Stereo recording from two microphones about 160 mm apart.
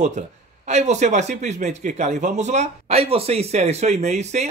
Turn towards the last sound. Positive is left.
turn(degrees=-45)  # may be behind; listen again after turning